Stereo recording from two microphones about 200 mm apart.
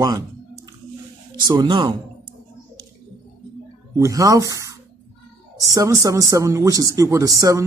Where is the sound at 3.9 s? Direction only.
15° right (ahead or behind).